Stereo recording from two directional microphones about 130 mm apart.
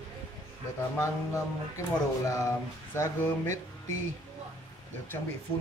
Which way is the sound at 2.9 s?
20° left (ahead or behind).